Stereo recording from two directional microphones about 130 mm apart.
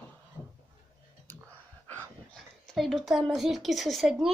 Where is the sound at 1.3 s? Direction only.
15° left (ahead or behind).